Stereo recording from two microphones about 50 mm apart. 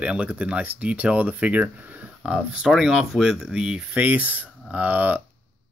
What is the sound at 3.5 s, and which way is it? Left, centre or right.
Speech, centre.